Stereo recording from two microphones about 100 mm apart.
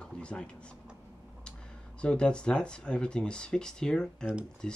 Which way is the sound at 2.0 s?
10° left (ahead or behind).